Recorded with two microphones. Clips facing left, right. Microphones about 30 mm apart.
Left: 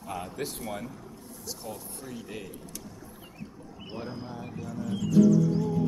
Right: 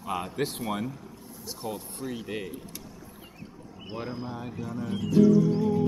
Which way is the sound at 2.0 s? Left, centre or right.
Right.